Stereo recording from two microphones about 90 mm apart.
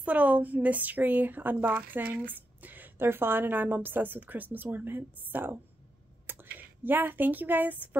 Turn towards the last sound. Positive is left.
turn(degrees=-20)  # may be behind; listen again after turning